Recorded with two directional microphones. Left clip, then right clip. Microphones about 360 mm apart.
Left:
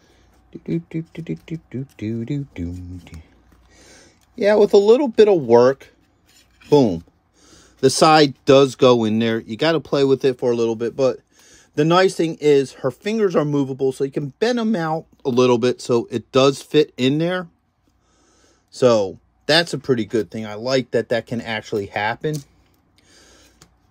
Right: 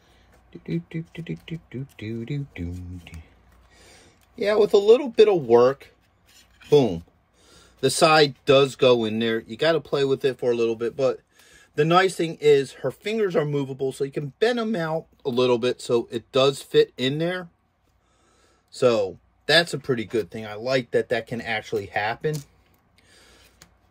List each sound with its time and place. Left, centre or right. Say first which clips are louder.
0.5 s speech: left 6 dB; centre
3.7 s speech: left 4 dB; centre
18.7 s speech: left 5 dB; centre